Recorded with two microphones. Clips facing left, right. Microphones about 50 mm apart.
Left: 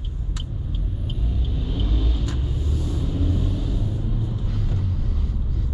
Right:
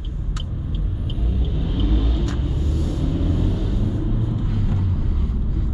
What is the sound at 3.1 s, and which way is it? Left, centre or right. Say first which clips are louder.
Vehicle: right 2 dB; centre.